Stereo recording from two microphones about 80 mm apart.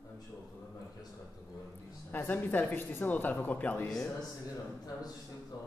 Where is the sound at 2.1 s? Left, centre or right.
Left.